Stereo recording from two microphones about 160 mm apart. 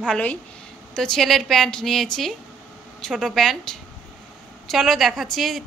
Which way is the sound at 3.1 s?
Centre (ahead or behind).